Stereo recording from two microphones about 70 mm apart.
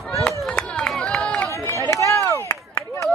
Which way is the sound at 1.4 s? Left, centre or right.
Left.